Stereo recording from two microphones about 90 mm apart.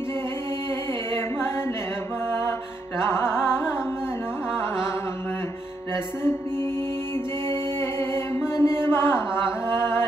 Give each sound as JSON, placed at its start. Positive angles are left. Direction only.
{"t": 3.1, "sound": "music", "side_deg": 25}
{"t": 8.1, "sound": "chant", "side_deg": 30}